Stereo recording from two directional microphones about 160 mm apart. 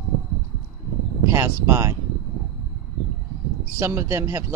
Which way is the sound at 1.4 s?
15° right (ahead or behind).